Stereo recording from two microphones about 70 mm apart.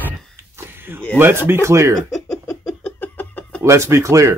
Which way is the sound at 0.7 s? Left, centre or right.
Right.